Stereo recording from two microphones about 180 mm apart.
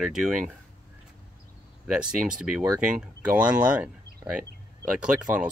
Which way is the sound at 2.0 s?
5° right (ahead or behind).